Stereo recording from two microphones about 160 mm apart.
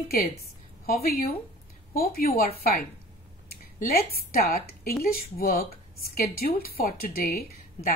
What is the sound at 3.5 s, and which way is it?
A woman's voice, 70° left (ahead or behind).